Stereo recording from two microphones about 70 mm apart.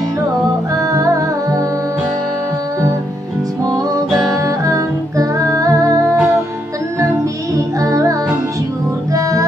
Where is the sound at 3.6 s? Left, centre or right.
Right.